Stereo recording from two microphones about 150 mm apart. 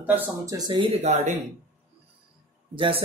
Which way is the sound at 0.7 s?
40° right (ahead or behind).